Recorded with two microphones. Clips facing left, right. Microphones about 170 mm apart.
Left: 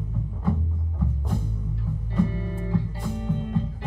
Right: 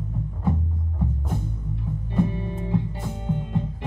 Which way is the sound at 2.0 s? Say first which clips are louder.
Right 1 dB; 20° right (ahead or behind).